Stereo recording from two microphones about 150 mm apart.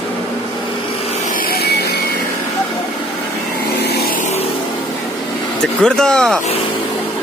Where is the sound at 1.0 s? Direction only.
60° left (ahead or behind); by 2.0 s 90° left.